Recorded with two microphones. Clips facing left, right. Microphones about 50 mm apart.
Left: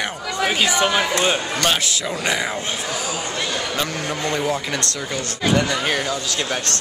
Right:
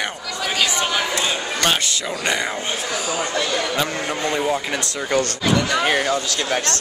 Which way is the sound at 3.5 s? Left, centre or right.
Centre.